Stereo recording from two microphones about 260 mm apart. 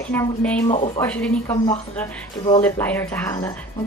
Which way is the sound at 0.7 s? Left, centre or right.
Left.